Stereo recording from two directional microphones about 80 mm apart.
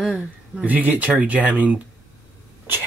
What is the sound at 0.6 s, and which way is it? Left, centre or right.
Speech, centre.